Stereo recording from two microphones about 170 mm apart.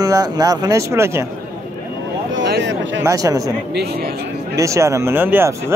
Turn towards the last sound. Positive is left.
turn(degrees=-15)  # may be behind; listen again after turning